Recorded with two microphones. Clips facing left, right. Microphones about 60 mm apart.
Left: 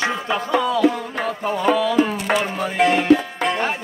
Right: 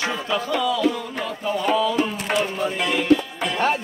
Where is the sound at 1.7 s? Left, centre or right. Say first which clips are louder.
Left 3 dB; left.